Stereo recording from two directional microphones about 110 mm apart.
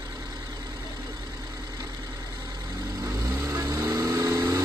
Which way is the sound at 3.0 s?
30° right (ahead or behind).